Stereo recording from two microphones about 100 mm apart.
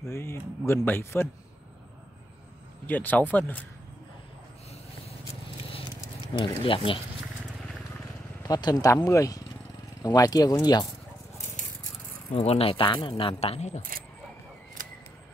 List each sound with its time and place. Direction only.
0.0 s speech: 25° left (ahead or behind)
2.9 s speech: 15° left (ahead or behind)
5.0 s biting: 90° left
6.2 s speech: 55° left (ahead or behind)
8.5 s speech: 45° left (ahead or behind)
8.9 s speech: 30° left (ahead or behind)
12.4 s speech: 85° left